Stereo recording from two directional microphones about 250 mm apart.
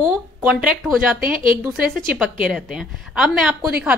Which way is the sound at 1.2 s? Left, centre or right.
Right.